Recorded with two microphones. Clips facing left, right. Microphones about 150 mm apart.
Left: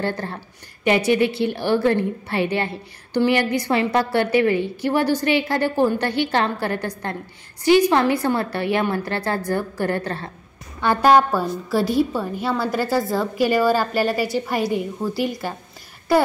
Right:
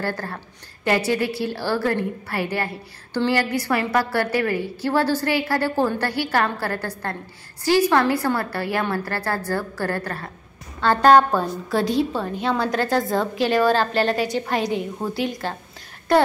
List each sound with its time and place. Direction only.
0.0 s a woman's voice: 20° left (ahead or behind)
10.8 s a woman's voice: 10° left (ahead or behind)